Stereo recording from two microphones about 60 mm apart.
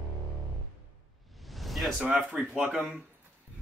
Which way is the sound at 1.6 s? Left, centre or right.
Centre.